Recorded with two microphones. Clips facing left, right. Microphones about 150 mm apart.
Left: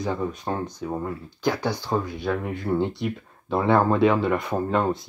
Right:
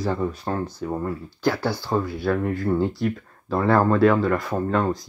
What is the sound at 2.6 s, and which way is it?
Speech, centre (ahead or behind).